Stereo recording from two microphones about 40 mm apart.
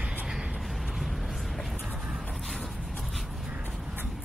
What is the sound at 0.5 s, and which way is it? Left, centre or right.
Vehicle, centre.